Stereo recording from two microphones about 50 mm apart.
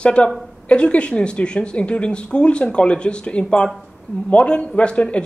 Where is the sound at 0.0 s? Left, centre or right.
Left.